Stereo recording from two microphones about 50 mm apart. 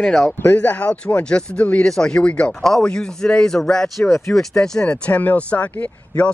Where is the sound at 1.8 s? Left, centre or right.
Centre.